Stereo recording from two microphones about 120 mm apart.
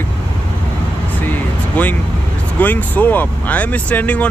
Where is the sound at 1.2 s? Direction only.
15° left (ahead or behind).